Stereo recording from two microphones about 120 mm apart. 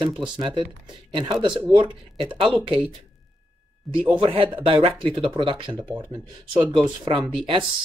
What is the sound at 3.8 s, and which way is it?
Speech, centre (ahead or behind).